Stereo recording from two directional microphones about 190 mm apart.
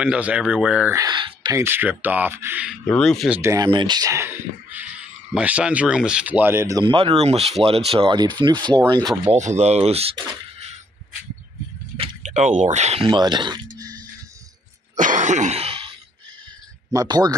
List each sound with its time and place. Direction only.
0.0 s speech: 5° right (ahead or behind)
0.9 s speech: 25° right (ahead or behind)
1.6 s speech: 10° right (ahead or behind)
2.9 s speech: centre (ahead or behind)
3.3 s speech: 15° right (ahead or behind)
3.6 s speech: 25° right (ahead or behind)
6.8 s speech: 25° right (ahead or behind)
9.3 s speech: 35° right (ahead or behind)
12.0 s speech: 35° right (ahead or behind)
15.0 s throat clearing: 40° right (ahead or behind)
16.9 s speech: 20° right (ahead or behind)